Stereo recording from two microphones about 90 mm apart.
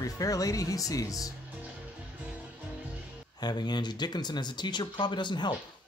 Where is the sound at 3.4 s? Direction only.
50° left (ahead or behind).